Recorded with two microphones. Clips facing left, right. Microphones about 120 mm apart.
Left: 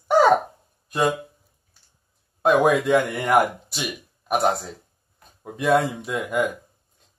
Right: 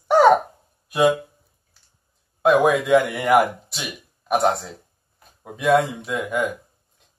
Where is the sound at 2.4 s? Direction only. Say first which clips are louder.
Right 1 dB; centre (ahead or behind).